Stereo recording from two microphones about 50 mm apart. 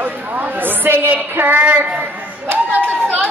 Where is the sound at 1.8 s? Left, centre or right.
Right.